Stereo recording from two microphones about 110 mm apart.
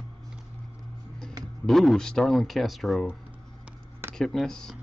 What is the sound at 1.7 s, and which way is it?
Speech, 5° left (ahead or behind).